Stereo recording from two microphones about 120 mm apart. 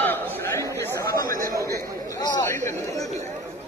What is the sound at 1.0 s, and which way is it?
Chatter, 30° left (ahead or behind).